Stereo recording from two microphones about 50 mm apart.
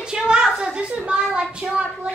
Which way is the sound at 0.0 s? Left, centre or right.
Centre.